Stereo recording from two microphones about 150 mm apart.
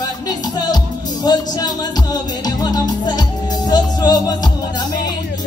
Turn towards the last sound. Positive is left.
turn(degrees=25)  # may be behind; listen again after turning